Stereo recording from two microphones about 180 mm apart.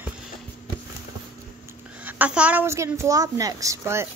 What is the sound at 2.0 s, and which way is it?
A woman's voice, 10° right (ahead or behind).